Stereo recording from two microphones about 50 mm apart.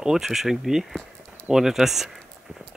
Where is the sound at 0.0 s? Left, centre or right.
Centre.